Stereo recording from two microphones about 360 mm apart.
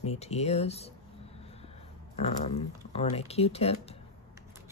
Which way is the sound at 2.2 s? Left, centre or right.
Centre.